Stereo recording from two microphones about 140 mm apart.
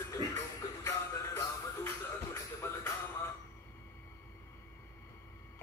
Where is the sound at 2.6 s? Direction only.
15° left (ahead or behind).